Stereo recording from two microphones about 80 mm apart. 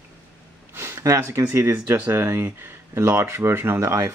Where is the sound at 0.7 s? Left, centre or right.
Right.